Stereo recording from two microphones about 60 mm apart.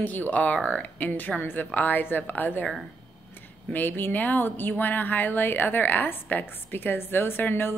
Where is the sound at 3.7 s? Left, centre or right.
Left.